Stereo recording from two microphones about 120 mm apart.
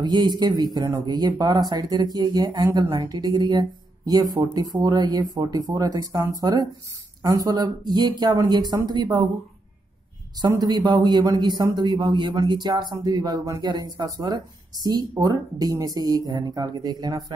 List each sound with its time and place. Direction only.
0.0 s speech: 35° right (ahead or behind)
10.5 s speech: 30° right (ahead or behind)